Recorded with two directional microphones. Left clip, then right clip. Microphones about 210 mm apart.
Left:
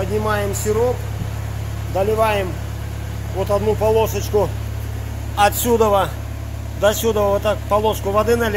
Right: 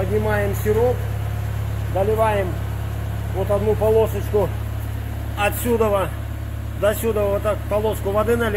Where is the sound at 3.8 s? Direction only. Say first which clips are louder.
Left 1 dB; 20° left (ahead or behind).